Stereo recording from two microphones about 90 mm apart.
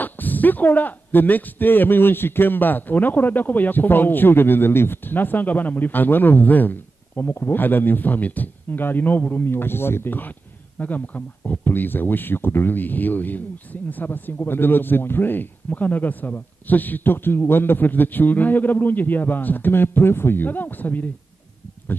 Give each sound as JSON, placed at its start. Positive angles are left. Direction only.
{"t": 0.0, "sound": "speech", "side_deg": 20}